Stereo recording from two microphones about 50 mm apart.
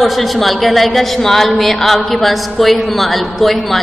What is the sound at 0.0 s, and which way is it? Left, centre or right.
A woman's voice, centre.